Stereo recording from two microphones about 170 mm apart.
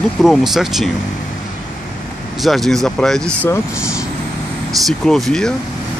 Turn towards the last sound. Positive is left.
turn(degrees=5)  # may be behind; listen again after turning